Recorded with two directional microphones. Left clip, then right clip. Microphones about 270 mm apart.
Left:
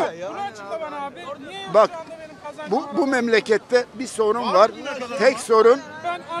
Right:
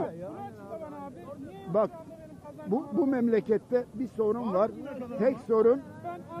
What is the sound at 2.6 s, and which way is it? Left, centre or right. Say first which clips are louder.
Speech: left 7 dB; centre.